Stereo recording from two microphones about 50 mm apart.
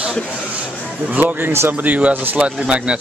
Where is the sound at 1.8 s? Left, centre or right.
Right.